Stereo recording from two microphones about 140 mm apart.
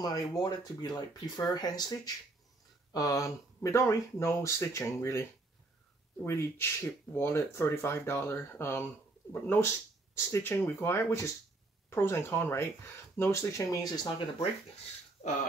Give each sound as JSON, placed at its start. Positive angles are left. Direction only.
{"t": 0.0, "sound": "speech", "side_deg": 30}
{"t": 6.2, "sound": "speech", "side_deg": 20}
{"t": 15.2, "sound": "a sound", "side_deg": 50}